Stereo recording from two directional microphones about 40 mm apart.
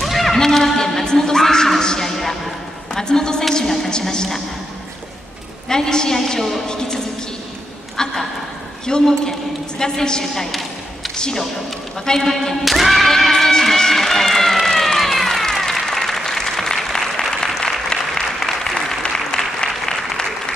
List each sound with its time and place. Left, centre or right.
0.0 s music: centre
1.8 s a sound: centre
2.9 s a sound: centre
4.0 s a woman's voice: centre
5.7 s a woman's voice: centre
8.0 s a woman's voice: centre
12.1 s a woman's voice: centre
12.7 s a sound: centre
13.1 s run: centre
17.6 s applause: centre